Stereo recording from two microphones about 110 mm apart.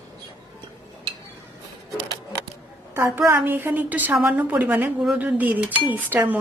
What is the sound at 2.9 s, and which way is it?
Speech, 20° right (ahead or behind).